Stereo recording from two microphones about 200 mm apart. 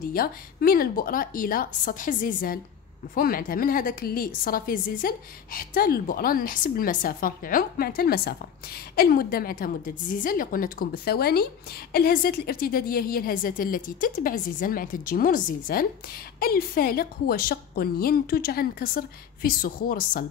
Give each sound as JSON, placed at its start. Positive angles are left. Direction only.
{"t": 0.1, "sound": "a woman's voice", "side_deg": 45}